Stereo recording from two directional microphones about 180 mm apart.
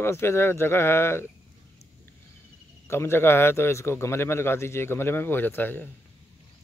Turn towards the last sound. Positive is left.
turn(degrees=10)  # may be behind; listen again after turning